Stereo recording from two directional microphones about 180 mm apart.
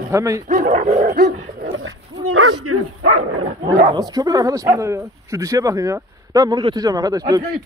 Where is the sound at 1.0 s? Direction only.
60° right (ahead or behind); by 1.9 s 80° right.